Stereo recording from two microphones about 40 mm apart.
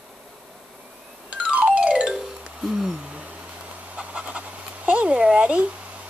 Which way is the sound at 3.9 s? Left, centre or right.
Right.